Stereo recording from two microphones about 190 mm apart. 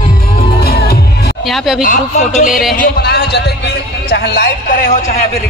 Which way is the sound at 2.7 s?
60° left (ahead or behind).